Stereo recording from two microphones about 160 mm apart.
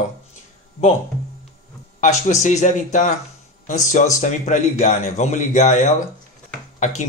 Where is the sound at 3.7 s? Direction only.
50° left (ahead or behind).